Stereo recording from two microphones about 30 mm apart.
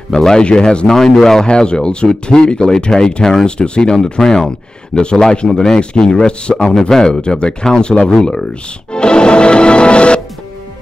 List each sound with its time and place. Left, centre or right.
0.1 s speech: centre
0.4 s speech: left
1.1 s speech: centre
1.4 s speech: left
3.9 s speech: left
5.5 s speech: centre
7.2 s speech: left
8.1 s speech: left
8.9 s music: left